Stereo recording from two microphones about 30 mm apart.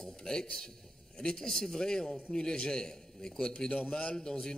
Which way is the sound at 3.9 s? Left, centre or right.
Left.